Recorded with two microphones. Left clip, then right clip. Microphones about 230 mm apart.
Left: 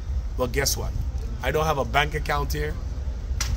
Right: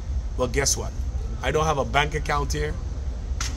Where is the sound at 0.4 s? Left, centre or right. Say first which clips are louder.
Right 1 dB; centre.